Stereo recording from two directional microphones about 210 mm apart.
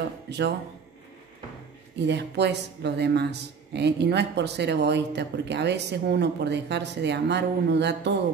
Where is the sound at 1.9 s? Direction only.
55° right (ahead or behind).